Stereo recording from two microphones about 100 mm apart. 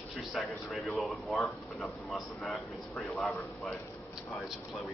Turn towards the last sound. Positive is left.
turn(degrees=10)  # may be behind; listen again after turning